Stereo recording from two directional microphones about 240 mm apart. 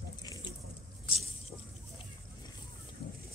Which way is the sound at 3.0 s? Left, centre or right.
Left.